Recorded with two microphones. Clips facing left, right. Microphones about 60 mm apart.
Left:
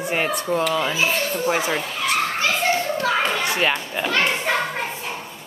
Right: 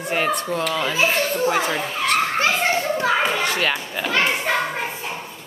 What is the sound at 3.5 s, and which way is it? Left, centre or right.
Children playing, centre.